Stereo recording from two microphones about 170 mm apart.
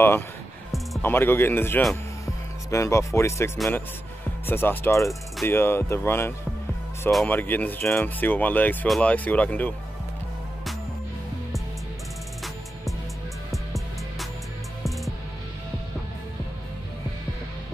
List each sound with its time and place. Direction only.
1.0 s speech: 10° left (ahead or behind)